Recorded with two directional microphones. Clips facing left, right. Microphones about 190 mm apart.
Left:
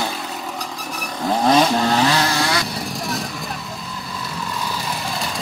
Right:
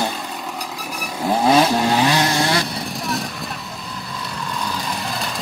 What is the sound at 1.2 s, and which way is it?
Vehicle, 5° right (ahead or behind).